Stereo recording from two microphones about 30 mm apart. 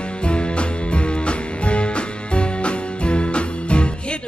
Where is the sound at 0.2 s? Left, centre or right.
Left.